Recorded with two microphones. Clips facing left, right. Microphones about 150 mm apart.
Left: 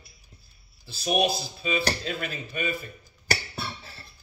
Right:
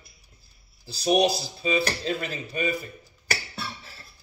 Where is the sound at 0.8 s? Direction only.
35° right (ahead or behind).